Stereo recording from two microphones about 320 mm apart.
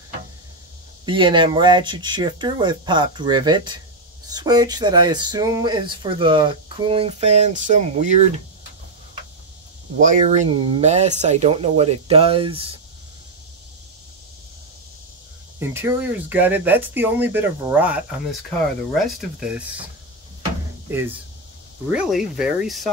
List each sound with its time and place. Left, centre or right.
1.0 s speech: centre
9.9 s speech: right
15.6 s speech: centre
20.9 s speech: centre